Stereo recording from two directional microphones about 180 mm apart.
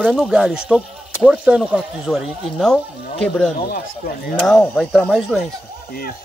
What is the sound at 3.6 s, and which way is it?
Speech, 55° left (ahead or behind).